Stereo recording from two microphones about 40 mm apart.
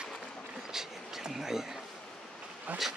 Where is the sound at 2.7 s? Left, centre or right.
Right.